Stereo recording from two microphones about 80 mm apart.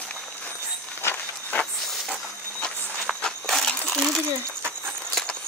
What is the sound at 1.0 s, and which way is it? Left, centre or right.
Walk, centre.